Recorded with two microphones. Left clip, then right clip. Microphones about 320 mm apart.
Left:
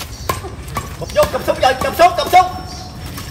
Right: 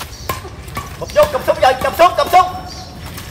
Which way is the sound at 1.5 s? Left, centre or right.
Centre.